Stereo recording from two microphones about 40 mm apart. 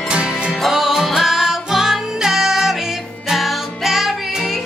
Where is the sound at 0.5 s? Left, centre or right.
Centre.